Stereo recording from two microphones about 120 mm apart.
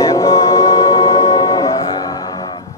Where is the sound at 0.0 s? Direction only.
25° left (ahead or behind).